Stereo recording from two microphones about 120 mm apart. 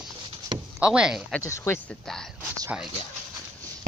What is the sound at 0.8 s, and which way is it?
Speech, 10° right (ahead or behind).